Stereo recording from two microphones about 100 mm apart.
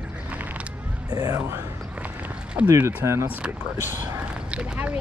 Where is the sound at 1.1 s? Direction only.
40° right (ahead or behind).